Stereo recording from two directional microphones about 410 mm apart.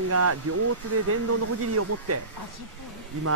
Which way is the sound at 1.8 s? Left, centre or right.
Right.